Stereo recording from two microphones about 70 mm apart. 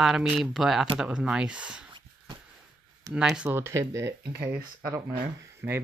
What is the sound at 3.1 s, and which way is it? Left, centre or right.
Speech, centre.